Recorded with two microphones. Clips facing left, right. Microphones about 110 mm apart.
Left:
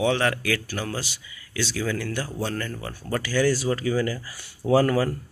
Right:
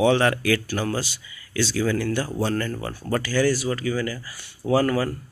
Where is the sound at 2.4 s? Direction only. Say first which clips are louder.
Right 4 dB; 5° right (ahead or behind).